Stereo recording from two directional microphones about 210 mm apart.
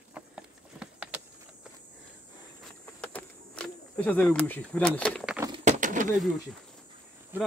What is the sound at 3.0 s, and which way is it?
Insect, 5° left (ahead or behind).